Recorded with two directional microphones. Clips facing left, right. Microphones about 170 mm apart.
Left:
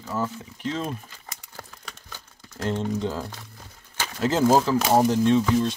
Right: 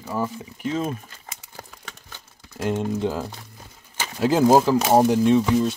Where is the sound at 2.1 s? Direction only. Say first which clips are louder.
Right 1 dB; 10° right (ahead or behind).